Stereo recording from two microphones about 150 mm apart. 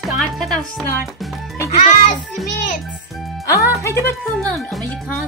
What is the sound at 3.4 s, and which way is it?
Speech, 20° left (ahead or behind).